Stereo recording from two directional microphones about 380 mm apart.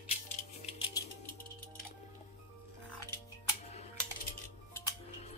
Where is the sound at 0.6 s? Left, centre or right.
Centre.